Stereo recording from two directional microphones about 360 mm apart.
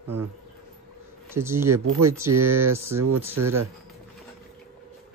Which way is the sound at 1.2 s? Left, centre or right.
Centre.